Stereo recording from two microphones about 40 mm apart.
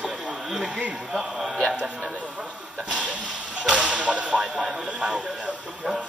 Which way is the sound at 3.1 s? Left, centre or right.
Right.